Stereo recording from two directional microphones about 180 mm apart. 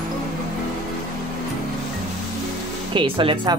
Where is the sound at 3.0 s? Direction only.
30° right (ahead or behind).